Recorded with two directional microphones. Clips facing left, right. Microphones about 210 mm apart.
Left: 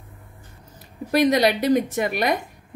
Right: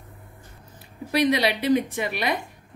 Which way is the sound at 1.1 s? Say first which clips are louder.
Left 4 dB; 45° left (ahead or behind).